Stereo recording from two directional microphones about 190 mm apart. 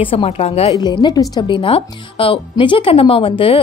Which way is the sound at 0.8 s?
20° left (ahead or behind).